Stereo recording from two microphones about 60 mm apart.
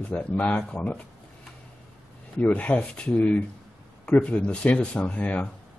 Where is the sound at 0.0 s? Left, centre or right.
Left.